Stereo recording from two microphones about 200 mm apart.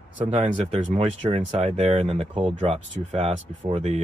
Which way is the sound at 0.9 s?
30° right (ahead or behind).